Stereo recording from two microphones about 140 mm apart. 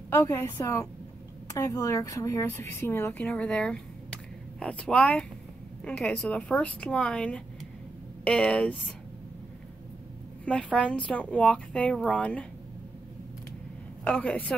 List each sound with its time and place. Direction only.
0.1 s a woman's voice: 20° left (ahead or behind)
10.4 s speech: 10° left (ahead or behind)
14.0 s speech: 10° left (ahead or behind)